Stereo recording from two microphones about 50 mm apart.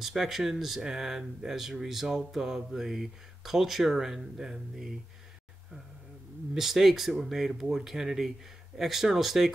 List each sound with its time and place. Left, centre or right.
0.0 s speech: centre
6.5 s speech: centre